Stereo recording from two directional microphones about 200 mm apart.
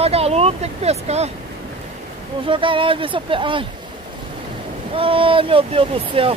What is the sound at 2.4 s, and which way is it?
Speech, 25° right (ahead or behind).